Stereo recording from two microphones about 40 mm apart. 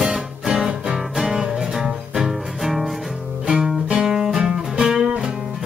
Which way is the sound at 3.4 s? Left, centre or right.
Centre.